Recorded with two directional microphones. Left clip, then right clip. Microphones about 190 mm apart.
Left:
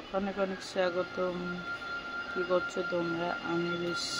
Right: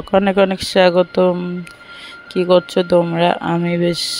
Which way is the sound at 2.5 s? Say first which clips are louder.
Right 19 dB; 50° right (ahead or behind).